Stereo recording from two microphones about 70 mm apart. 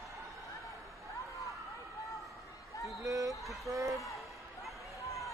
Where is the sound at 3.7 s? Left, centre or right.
Right.